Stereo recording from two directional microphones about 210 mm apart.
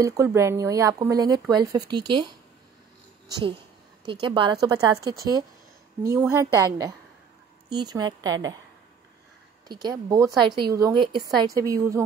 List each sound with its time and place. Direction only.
0.0 s speech: 15° right (ahead or behind)
3.3 s speech: 20° right (ahead or behind)
9.7 s speech: 20° right (ahead or behind)